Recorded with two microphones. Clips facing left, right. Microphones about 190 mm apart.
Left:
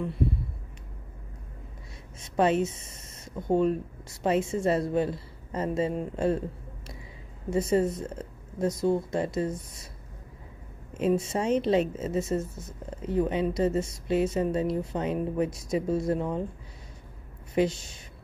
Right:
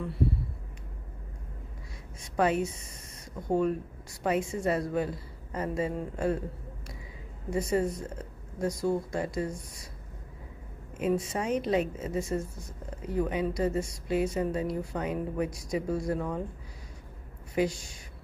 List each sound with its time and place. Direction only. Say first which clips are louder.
2.1 s a woman's voice: left 3 dB; 25° left (ahead or behind)
7.5 s a woman's voice: left 3 dB; 25° left (ahead or behind)
11.0 s a woman's voice: left 3 dB; 25° left (ahead or behind)
17.6 s a woman's voice: left 3 dB; 25° left (ahead or behind)